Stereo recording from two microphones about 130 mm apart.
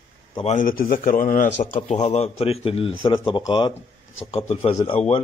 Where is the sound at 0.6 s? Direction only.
90° left.